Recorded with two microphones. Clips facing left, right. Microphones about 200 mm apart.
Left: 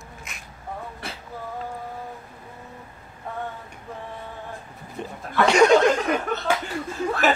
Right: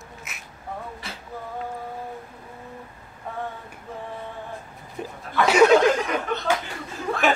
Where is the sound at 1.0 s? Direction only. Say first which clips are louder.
Left 2 dB; 55° left (ahead or behind).